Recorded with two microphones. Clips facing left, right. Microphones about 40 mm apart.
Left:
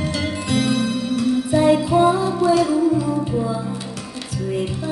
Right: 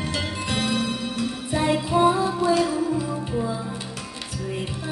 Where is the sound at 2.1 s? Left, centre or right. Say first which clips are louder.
Left 4 dB; centre.